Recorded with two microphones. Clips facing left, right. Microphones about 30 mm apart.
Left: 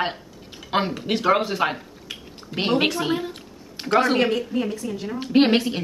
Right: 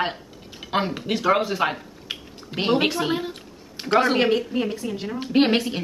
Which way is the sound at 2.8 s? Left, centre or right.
Centre.